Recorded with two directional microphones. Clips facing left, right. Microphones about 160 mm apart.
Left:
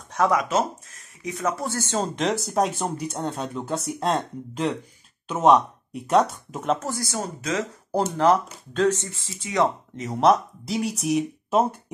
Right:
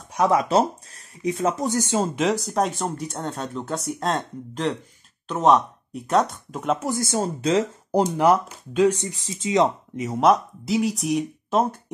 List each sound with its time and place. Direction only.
0.3 s speech: 30° right (ahead or behind); by 6.8 s centre (ahead or behind)
6.8 s speech: 20° right (ahead or behind)
7.9 s speech: 15° right (ahead or behind)
10.0 s speech: centre (ahead or behind)